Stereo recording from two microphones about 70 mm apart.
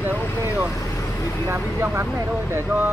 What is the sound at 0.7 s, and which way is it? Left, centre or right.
Vehicle, left.